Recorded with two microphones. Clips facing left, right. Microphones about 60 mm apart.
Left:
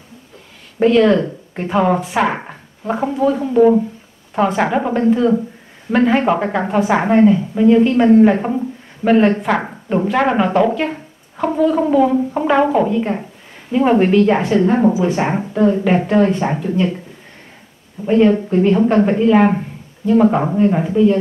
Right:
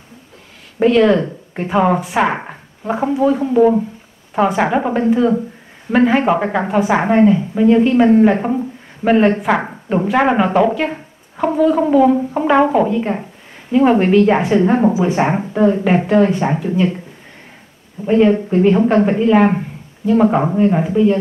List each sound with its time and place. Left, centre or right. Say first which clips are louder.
0.7 s a woman's voice: even; centre
14.3 s a woman's voice: right 1 dB; centre
18.0 s a woman's voice: even; centre